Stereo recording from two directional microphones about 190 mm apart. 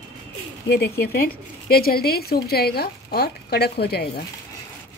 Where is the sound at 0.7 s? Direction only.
55° left (ahead or behind).